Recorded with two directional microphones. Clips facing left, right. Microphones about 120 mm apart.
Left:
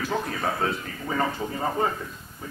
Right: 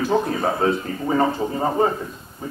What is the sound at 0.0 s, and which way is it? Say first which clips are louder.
Speech: right 7 dB; 25° right (ahead or behind).